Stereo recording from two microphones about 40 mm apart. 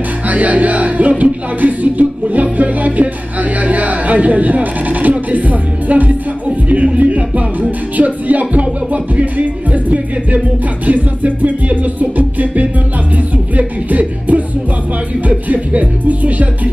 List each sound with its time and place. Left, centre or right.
0.3 s speech: right
3.6 s a sound: right
6.9 s music: right